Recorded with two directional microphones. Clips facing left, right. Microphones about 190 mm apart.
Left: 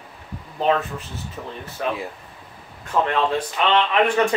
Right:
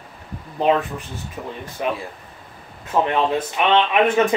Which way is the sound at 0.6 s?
15° right (ahead or behind).